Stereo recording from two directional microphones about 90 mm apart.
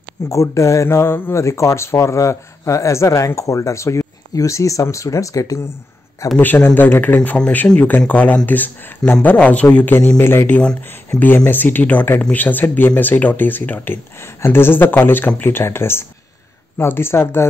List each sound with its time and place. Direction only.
0.3 s speech: 35° left (ahead or behind)
6.3 s speech: 20° left (ahead or behind)
7.2 s speech: 10° left (ahead or behind); by 17.5 s 25° left (ahead or behind)